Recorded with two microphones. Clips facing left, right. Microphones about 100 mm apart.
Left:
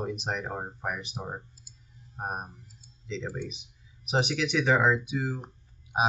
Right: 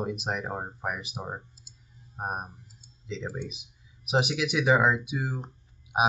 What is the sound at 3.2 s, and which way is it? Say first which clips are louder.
Speech: right 1 dB; 20° right (ahead or behind).